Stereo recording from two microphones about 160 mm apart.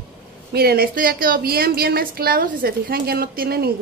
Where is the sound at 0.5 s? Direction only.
75° right (ahead or behind).